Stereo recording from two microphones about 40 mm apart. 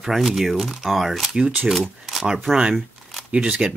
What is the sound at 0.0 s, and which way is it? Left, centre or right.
Speech, centre.